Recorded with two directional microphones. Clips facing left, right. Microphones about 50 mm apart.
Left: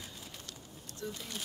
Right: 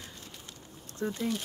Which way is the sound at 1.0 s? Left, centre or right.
Right.